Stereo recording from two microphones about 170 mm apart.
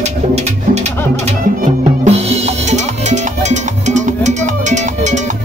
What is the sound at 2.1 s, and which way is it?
Music, 40° right (ahead or behind).